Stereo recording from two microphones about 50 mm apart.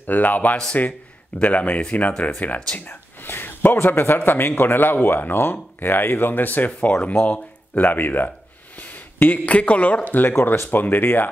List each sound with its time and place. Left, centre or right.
0.0 s speech: left
2.9 s a sound: left
3.7 s a man's voice: left
6.9 s speech: left
10.4 s a man's voice: left